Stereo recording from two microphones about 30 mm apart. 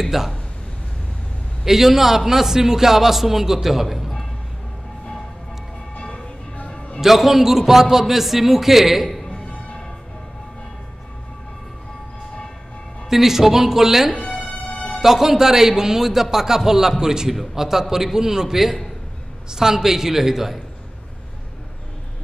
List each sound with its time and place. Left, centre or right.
0.0 s a man's voice: centre
1.6 s a man's voice: centre
7.0 s a man's voice: centre
13.1 s a man's voice: centre
14.1 s music: left
15.0 s a man's voice: centre